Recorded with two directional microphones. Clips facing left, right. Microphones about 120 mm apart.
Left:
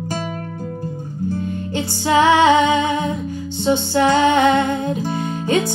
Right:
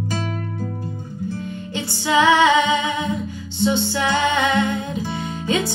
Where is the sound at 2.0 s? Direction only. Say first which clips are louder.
Left 2 dB; 45° left (ahead or behind).